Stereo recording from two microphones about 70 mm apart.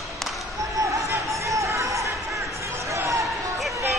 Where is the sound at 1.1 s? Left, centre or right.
Right.